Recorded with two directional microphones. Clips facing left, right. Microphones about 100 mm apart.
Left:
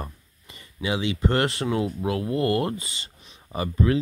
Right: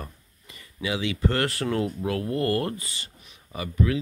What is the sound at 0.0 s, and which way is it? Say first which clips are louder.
Speech: left 3 dB; 25° left (ahead or behind).